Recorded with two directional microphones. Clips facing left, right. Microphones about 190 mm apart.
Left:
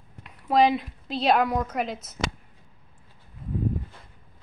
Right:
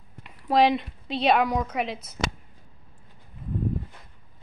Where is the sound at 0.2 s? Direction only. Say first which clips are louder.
Even; centre (ahead or behind).